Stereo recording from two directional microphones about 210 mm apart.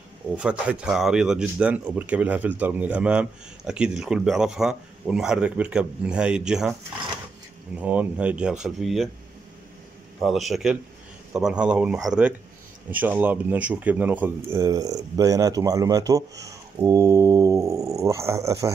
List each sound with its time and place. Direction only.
0.4 s speech: 5° right (ahead or behind)
7.8 s speech: 5° right (ahead or behind)
10.2 s speech: centre (ahead or behind)